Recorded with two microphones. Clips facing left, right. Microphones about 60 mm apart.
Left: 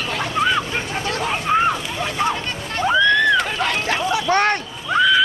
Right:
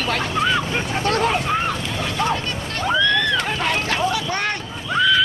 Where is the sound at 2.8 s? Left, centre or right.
Centre.